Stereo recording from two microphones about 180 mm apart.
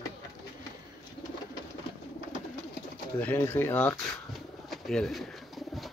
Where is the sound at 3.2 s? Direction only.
10° left (ahead or behind).